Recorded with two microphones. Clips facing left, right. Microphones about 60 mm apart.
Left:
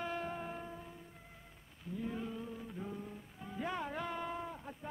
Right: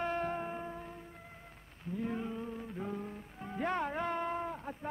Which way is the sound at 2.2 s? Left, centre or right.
Right.